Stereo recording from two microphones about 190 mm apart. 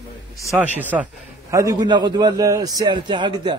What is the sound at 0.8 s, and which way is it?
A man's voice, 10° right (ahead or behind).